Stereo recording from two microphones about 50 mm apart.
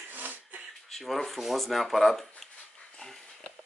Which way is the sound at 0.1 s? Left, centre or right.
Right.